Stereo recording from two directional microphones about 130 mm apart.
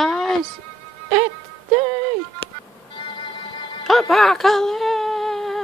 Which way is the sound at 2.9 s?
40° left (ahead or behind).